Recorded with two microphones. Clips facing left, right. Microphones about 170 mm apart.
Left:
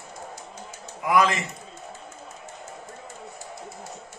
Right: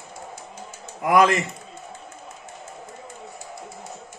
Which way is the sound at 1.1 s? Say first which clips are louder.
Right 4 dB; 55° right (ahead or behind).